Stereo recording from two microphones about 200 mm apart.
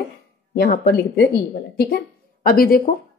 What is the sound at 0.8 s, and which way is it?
A woman's voice, 50° left (ahead or behind).